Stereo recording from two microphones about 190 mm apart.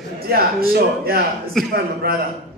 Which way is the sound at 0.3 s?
50° right (ahead or behind).